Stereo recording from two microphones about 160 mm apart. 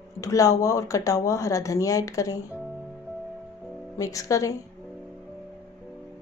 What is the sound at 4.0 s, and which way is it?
Speech, 20° left (ahead or behind).